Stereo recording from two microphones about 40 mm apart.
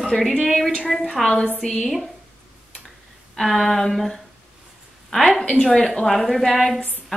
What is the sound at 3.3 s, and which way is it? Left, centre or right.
Speech, centre.